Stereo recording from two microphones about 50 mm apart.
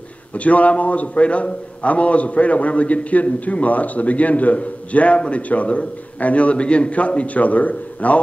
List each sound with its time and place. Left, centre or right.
0.3 s a man's voice: left